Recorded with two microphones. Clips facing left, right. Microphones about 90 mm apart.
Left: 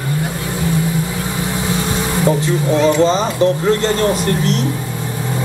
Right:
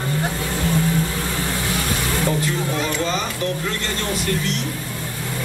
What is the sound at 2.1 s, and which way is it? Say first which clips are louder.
Speech: left 7 dB; 20° left (ahead or behind).